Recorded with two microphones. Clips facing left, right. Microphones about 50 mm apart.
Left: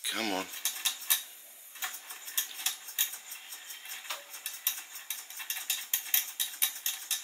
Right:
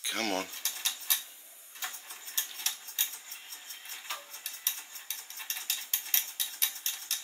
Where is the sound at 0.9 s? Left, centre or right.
Centre.